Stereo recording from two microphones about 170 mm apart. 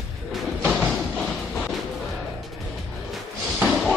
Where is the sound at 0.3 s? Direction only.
Centre (ahead or behind).